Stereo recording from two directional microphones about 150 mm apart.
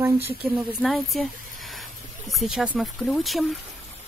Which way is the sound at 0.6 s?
Centre (ahead or behind).